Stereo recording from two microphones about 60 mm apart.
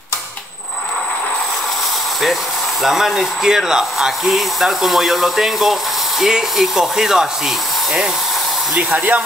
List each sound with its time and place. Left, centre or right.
2.8 s speech: centre
8.9 s speech: right